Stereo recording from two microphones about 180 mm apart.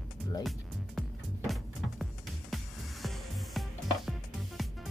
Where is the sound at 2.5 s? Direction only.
Centre (ahead or behind).